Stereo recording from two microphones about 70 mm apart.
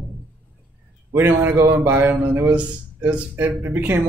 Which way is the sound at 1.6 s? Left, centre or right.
Right.